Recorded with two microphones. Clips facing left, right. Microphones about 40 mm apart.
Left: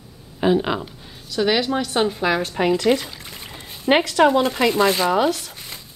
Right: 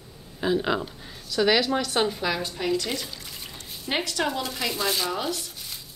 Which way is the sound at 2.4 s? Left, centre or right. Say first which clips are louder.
Left 8 dB; left.